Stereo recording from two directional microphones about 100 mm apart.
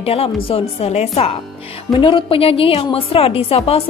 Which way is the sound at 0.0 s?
75° left (ahead or behind).